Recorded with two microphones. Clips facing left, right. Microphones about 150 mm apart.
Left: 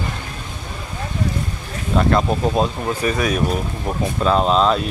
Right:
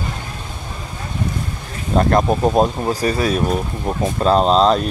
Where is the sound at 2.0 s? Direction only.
45° right (ahead or behind).